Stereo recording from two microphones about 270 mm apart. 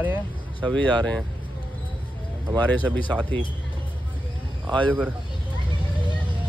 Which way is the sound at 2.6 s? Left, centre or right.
Centre.